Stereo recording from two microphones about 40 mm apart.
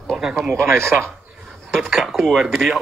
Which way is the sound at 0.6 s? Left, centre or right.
Right.